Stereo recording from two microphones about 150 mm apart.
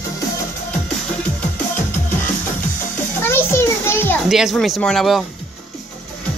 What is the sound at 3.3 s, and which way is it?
Children playing, 15° left (ahead or behind).